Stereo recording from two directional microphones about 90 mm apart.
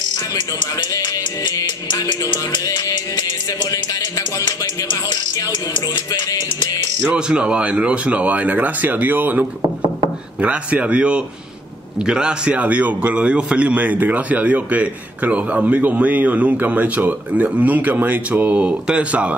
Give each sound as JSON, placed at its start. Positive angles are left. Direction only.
{"t": 0.9, "sound": "music", "side_deg": 50}
{"t": 7.0, "sound": "a man's voice", "side_deg": -10}